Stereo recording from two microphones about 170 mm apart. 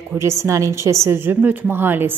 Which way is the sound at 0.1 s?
15° right (ahead or behind).